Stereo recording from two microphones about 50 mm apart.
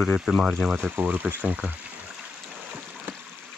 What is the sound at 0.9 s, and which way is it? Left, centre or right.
Speech, right.